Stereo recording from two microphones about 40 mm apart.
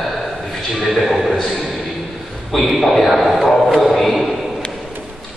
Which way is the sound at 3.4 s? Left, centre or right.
Centre.